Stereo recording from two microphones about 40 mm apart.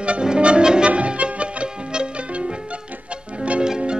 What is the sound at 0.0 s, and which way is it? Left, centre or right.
Music, right.